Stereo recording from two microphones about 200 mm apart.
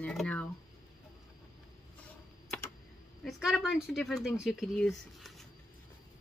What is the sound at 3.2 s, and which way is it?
Speech, centre (ahead or behind).